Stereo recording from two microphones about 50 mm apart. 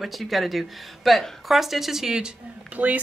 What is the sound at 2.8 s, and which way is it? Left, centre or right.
Speech, right.